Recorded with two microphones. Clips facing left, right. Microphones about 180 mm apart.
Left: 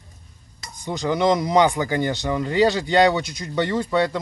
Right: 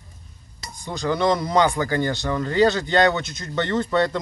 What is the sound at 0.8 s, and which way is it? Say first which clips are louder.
Speech: left 1 dB; 15° left (ahead or behind).